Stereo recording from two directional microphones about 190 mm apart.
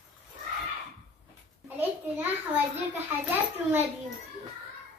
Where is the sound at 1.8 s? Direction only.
10° right (ahead or behind).